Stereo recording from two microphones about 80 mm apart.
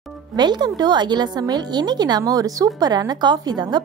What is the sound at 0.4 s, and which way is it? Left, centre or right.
A woman's voice, right.